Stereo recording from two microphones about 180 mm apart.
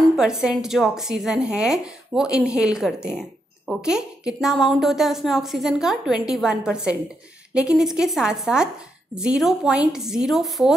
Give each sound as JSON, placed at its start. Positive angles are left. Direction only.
{"t": 0.2, "sound": "a woman's voice", "side_deg": -5}